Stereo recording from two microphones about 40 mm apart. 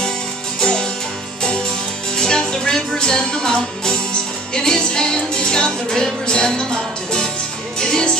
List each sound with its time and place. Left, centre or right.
0.6 s music: left